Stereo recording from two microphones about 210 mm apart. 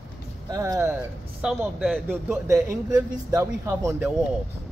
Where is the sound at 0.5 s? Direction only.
15° right (ahead or behind).